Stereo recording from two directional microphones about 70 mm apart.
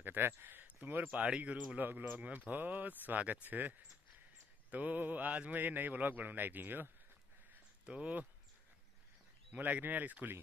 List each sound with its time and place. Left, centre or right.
0.0 s speech: right
7.8 s speech: centre
9.5 s speech: right